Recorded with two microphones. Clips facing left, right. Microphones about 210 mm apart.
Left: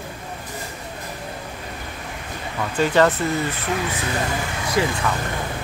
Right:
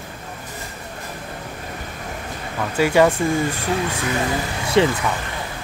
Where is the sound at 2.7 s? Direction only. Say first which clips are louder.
Right 2 dB; 10° right (ahead or behind).